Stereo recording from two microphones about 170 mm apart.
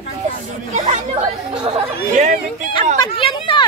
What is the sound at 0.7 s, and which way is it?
Speech, 40° right (ahead or behind).